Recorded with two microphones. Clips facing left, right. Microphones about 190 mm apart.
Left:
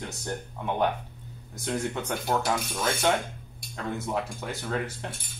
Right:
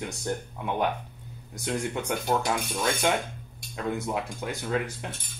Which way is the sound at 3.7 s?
15° right (ahead or behind).